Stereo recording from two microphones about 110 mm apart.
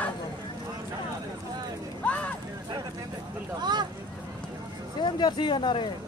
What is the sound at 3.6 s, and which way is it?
Speech, 40° right (ahead or behind).